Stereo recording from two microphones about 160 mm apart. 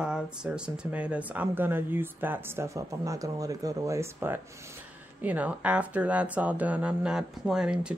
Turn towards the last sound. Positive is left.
turn(degrees=-5)  # may be behind; listen again after turning